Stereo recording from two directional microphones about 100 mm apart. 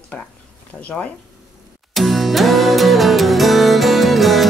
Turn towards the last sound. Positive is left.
turn(degrees=0)  # may be behind; listen again after turning